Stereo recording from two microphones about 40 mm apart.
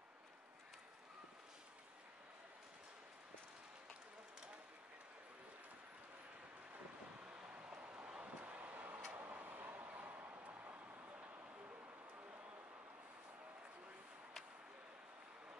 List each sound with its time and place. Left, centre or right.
7.2 s vehicle: right
7.8 s a sound: right
8.2 s vehicle: right
9.3 s tick-tock: right
9.8 s a sound: right
10.6 s vehicle: right